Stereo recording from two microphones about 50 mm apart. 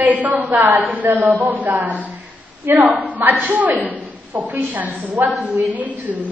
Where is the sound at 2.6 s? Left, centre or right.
Right.